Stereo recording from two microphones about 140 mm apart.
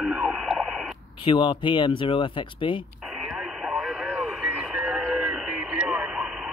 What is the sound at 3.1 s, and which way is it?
Radio, centre (ahead or behind).